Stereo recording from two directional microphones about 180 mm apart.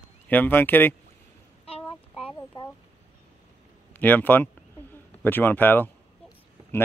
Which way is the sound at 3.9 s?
10° left (ahead or behind).